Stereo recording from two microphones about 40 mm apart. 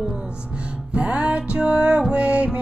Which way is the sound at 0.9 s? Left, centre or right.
Right.